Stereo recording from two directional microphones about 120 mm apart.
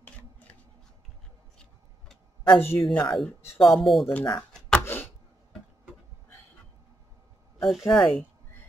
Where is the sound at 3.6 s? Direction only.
Centre (ahead or behind).